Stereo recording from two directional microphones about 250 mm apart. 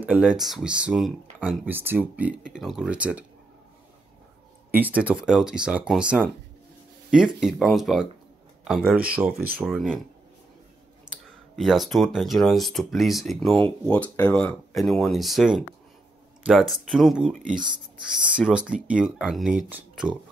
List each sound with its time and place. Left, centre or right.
0.0 s speech: centre
4.6 s speech: centre
11.1 s clicking: centre
11.5 s speech: centre